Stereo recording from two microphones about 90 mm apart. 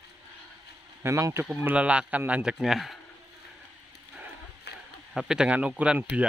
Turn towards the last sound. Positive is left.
turn(degrees=-15)  # may be behind; listen again after turning